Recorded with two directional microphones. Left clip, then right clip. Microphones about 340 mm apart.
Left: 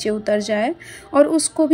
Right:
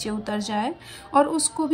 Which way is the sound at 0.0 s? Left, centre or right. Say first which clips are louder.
Left 9 dB; centre.